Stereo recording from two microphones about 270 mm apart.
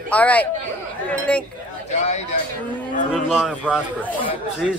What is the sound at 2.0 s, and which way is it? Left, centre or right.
Speech, left.